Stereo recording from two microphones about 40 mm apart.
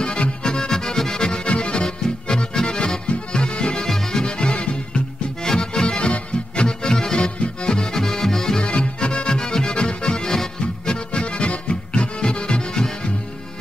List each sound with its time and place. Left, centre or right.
0.0 s music: left
1.5 s accordion: left
3.8 s music: centre
4.2 s music: left
7.6 s accordion: centre
8.5 s music: left
11.1 s music: left